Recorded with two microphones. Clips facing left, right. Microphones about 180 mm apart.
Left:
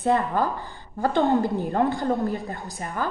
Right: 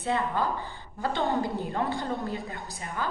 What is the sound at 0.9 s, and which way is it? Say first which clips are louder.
Speech: left 8 dB; 50° left (ahead or behind).